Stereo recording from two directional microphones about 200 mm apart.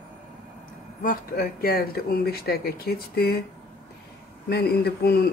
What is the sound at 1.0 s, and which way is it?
Speech, 45° left (ahead or behind).